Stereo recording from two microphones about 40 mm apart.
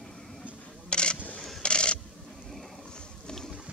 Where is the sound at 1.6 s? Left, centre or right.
Left.